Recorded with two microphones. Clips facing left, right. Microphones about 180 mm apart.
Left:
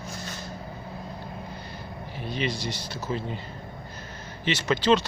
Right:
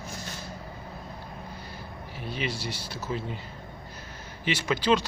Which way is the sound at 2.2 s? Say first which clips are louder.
Left 3 dB; 5° right (ahead or behind).